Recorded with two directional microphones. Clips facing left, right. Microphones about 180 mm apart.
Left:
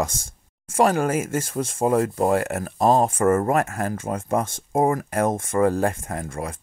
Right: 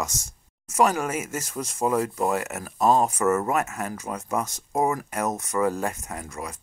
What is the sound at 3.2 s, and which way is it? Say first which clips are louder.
Speech: left 5 dB; 50° left (ahead or behind).